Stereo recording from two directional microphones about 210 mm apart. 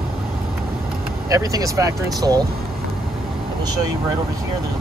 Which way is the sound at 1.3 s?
15° right (ahead or behind).